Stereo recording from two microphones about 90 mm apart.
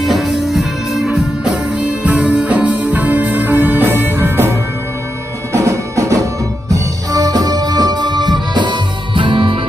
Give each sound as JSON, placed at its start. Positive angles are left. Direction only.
{"t": 0.0, "sound": "music", "side_deg": 0}